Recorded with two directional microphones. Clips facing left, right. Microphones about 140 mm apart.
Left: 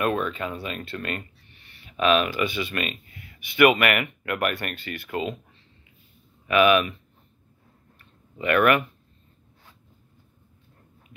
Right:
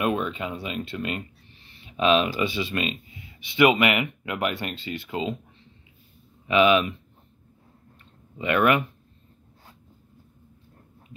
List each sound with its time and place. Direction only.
0.0 s speech: 15° right (ahead or behind)
6.4 s speech: 20° right (ahead or behind)
8.0 s a sound: 20° right (ahead or behind)